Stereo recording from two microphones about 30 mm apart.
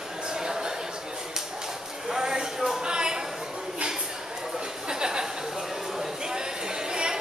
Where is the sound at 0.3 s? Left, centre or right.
Right.